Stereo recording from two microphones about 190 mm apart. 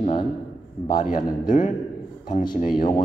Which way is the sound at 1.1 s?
45° left (ahead or behind).